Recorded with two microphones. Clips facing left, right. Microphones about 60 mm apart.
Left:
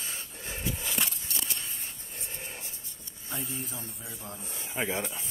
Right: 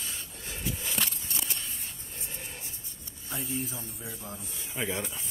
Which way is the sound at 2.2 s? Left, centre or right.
Left.